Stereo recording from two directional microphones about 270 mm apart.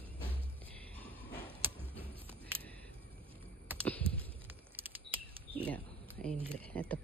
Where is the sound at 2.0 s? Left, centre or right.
Centre.